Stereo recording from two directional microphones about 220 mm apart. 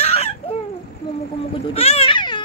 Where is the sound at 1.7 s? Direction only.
25° left (ahead or behind).